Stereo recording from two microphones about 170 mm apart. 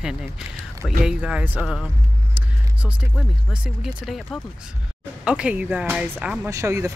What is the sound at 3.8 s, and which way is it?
Speech, centre (ahead or behind).